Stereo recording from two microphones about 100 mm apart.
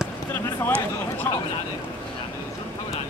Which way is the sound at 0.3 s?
20° left (ahead or behind).